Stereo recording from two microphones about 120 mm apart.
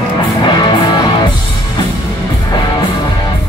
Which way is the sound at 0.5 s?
40° left (ahead or behind).